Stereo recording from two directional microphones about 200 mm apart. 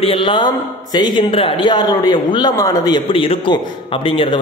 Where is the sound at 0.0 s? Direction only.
25° left (ahead or behind).